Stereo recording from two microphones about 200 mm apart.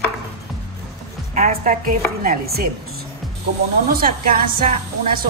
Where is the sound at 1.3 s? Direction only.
40° right (ahead or behind).